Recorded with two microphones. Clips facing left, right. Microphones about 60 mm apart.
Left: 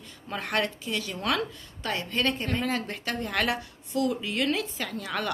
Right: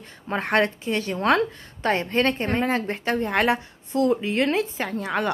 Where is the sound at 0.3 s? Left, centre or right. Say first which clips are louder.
Right 7 dB; right.